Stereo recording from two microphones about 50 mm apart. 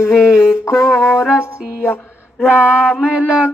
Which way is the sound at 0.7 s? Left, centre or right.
Left.